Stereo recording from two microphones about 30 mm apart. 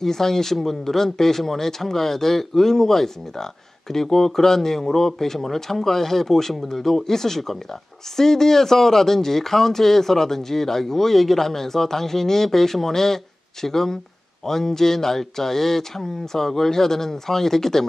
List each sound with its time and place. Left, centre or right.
0.0 s speech: centre